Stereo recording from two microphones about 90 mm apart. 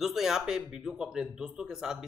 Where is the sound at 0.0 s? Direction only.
5° right (ahead or behind).